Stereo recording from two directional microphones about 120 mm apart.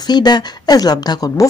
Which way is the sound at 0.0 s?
35° left (ahead or behind).